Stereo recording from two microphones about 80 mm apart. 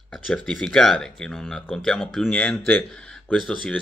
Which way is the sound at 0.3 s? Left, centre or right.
Centre.